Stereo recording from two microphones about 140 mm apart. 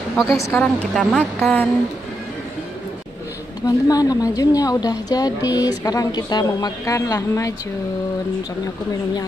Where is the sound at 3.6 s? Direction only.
25° left (ahead or behind).